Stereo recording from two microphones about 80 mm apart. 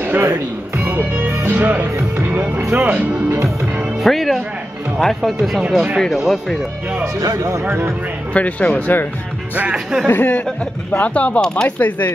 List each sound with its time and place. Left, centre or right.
0.0 s speech: right
2.9 s speech: right
4.0 s speech: centre
7.2 s speech: right
7.6 s speech: right
8.3 s speech: centre
9.6 s speech: centre
10.0 s speech: centre